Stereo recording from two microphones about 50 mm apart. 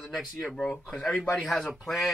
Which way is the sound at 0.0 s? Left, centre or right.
Centre.